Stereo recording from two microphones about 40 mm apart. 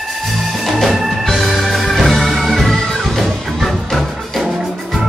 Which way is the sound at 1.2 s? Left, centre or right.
Centre.